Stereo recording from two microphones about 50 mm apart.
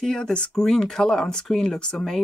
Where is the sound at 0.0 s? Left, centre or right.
Centre.